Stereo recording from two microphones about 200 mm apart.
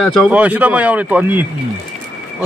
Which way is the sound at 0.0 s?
Centre (ahead or behind).